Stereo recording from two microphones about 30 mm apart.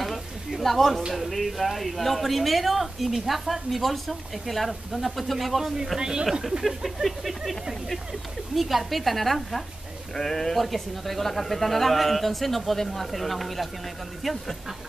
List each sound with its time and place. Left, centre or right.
0.0 s a sound: centre
1.1 s a woman's voice: centre
5.9 s speech: right
6.6 s a woman's voice: centre
8.5 s a woman's voice: centre